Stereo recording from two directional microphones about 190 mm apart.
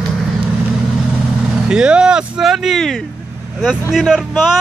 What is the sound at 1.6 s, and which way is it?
Vehicle, 5° right (ahead or behind).